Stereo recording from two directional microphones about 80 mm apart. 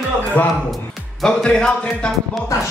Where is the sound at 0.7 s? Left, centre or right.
Centre.